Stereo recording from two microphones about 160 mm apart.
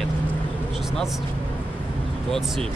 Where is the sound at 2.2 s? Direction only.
Centre (ahead or behind).